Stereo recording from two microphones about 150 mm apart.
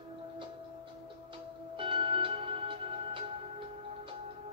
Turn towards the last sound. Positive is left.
turn(degrees=-35)  # may be behind; listen again after turning